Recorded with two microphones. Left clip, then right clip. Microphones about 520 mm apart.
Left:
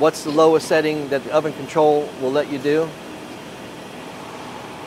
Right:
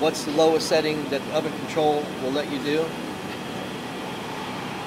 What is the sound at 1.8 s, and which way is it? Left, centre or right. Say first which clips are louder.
Speech: left 6 dB; left.